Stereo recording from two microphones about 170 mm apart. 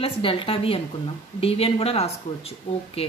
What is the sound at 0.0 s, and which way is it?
A woman's voice, 30° left (ahead or behind).